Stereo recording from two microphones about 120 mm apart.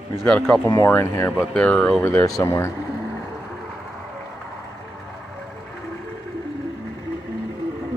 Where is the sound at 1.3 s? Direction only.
10° left (ahead or behind); by 2.7 s 25° left (ahead or behind).